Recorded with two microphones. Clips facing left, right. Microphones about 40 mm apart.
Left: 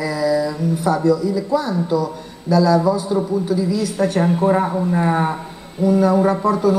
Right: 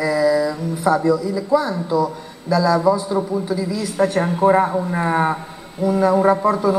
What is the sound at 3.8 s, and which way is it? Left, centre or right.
A woman's voice, centre.